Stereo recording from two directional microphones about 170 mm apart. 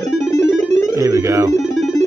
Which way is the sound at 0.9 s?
20° right (ahead or behind).